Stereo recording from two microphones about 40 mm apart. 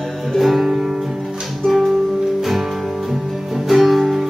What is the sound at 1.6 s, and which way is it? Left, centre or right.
Music, centre.